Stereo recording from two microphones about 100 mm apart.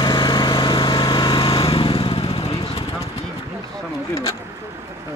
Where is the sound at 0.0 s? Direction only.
50° left (ahead or behind); by 2.8 s 70° left (ahead or behind).